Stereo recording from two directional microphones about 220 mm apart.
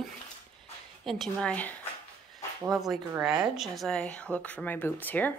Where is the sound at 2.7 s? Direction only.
Centre (ahead or behind).